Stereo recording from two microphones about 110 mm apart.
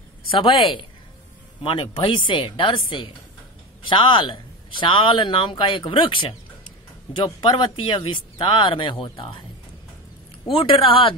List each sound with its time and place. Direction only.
0.3 s speech: 50° left (ahead or behind)
10.4 s speech: 50° left (ahead or behind)